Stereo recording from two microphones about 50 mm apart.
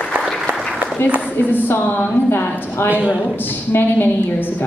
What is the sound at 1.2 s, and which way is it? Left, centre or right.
A woman's voice, left.